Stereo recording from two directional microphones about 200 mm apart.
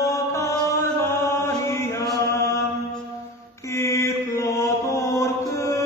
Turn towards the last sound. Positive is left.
turn(degrees=15)  # may be behind; listen again after turning